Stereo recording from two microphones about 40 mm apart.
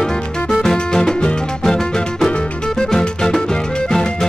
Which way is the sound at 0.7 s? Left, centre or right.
Centre.